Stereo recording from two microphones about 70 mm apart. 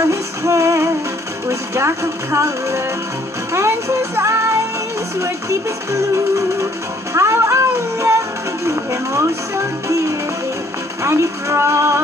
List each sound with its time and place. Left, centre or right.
0.0 s music: right
1.5 s speech: right
3.5 s music: right
5.2 s speech: right